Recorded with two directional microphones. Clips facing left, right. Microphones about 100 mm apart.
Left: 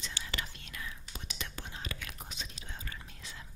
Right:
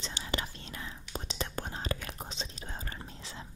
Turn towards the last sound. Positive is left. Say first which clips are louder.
# right 4 dB
turn(degrees=-35)  # may be behind; listen again after turning